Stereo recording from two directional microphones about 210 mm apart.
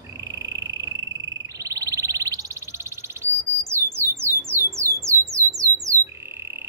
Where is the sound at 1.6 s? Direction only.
15° right (ahead or behind).